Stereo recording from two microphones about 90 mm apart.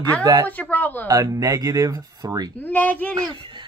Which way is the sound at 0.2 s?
40° right (ahead or behind).